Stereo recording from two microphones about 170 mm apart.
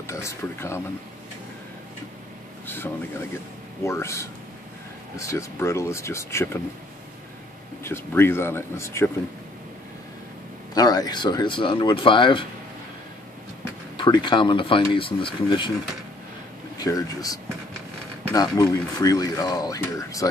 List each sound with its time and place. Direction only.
0.0 s speech: 15° left (ahead or behind)
2.6 s a sound: 10° left (ahead or behind)
3.8 s speech: 15° left (ahead or behind)
7.8 s speech: 15° left (ahead or behind)
10.7 s speech: 20° left (ahead or behind)
13.9 s speech: 25° left (ahead or behind)
16.7 s speech: 20° left (ahead or behind)